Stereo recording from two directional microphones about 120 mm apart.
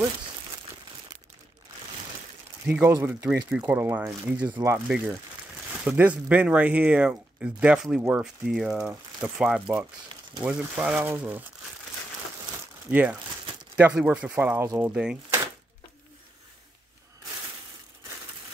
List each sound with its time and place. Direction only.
2.6 s speech: 15° right (ahead or behind)
12.9 s speech: 15° right (ahead or behind)